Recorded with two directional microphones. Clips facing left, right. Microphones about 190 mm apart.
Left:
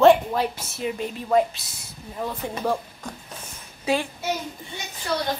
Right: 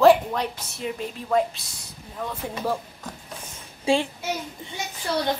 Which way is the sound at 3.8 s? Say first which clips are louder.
Right 2 dB; 25° right (ahead or behind).